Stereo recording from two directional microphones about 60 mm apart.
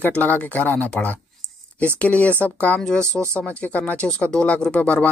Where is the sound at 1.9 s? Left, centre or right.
Left.